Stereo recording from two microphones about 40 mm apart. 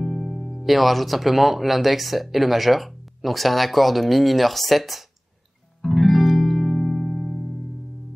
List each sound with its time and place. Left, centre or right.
0.0 s speech: centre
5.8 s music: centre